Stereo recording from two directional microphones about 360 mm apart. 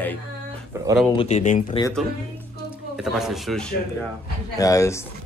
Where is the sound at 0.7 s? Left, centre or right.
Centre.